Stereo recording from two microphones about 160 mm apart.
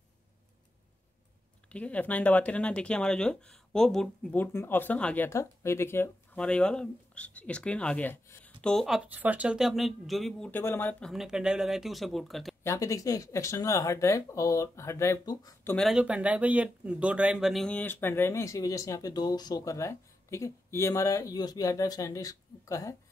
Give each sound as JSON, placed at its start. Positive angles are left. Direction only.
{"t": 1.7, "sound": "speech", "side_deg": 10}
{"t": 10.5, "sound": "speech", "side_deg": 15}
{"t": 12.6, "sound": "speech", "side_deg": 20}
{"t": 15.7, "sound": "speech", "side_deg": 0}